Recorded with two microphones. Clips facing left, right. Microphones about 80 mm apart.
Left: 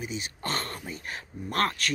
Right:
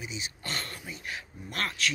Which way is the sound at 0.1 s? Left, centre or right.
Left.